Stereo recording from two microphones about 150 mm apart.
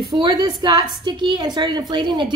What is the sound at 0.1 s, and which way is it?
A woman's voice, 30° right (ahead or behind).